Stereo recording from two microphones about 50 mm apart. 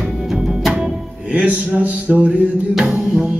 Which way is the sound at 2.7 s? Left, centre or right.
Centre.